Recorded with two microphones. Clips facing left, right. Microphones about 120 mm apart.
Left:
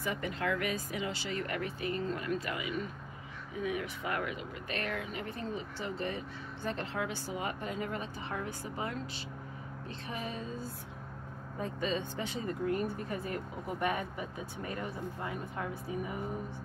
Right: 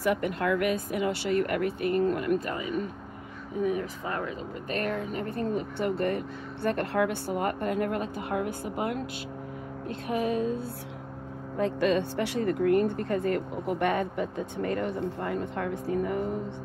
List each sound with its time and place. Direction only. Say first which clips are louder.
0.0 s speech: right 8 dB; 60° right (ahead or behind)
2.5 s speech: right 6 dB; 35° right (ahead or behind)
4.6 s speech: right 7 dB; 45° right (ahead or behind); by 10.6 s 65° right (ahead or behind)
11.5 s speech: right 10 dB; 75° right (ahead or behind)